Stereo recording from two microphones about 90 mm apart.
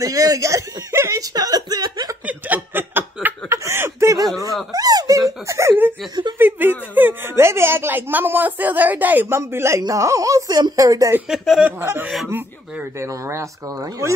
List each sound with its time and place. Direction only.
0.0 s a sound: 40° right (ahead or behind)
2.2 s chuckle: 20° right (ahead or behind)
3.4 s a sound: 35° right (ahead or behind)
5.5 s speech: 30° right (ahead or behind)
6.3 s a woman's voice: 20° right (ahead or behind); by 11.1 s 40° right (ahead or behind)
11.2 s speech: 5° right (ahead or behind)
12.3 s speech: 25° right (ahead or behind)
13.1 s speech: 35° right (ahead or behind)